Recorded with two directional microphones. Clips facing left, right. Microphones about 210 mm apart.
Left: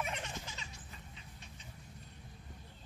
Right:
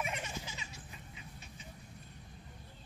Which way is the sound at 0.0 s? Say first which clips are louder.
Right 1 dB; 5° right (ahead or behind).